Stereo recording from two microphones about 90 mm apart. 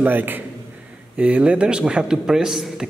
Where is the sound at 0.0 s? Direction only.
20° right (ahead or behind).